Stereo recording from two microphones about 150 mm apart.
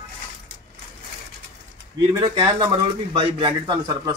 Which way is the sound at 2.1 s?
30° right (ahead or behind).